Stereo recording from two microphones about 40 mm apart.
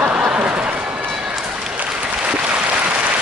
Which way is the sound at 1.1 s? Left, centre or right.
Centre.